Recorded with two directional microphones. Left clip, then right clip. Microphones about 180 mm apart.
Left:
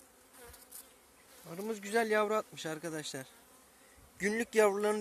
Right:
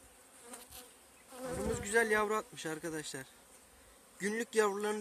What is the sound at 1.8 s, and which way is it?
Insect, 35° left (ahead or behind).